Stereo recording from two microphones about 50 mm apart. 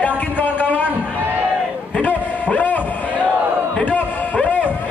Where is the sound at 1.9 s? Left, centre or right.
Left.